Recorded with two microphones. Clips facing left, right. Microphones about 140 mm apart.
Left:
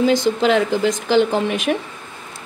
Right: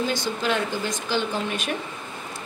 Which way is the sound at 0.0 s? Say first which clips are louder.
Left 10 dB; 90° left.